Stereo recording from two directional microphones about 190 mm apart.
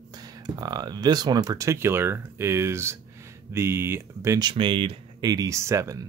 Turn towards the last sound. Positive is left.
turn(degrees=-15)  # may be behind; listen again after turning